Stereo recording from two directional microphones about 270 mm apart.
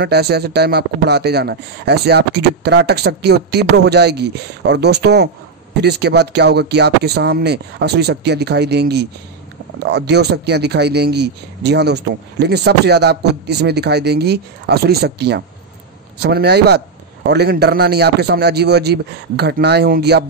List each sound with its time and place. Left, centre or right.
0.0 s speech: right